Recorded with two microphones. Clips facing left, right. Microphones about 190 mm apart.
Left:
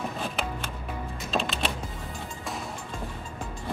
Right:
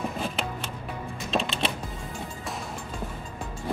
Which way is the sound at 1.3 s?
Centre (ahead or behind).